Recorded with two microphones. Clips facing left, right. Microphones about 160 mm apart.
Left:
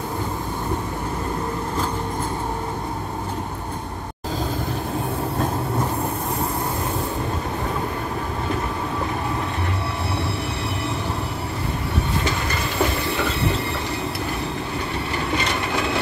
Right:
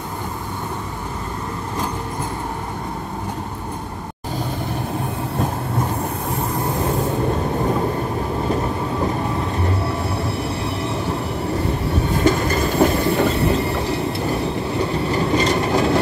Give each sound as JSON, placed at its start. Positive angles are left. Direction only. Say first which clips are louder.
{"t": 12.3, "sound": "train", "louder": "right 8 dB", "side_deg": -45}
{"t": 15.3, "sound": "vehicle", "louder": "right 6 dB", "side_deg": -40}